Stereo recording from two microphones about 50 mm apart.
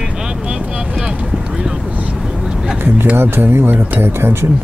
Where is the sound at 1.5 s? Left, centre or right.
Centre.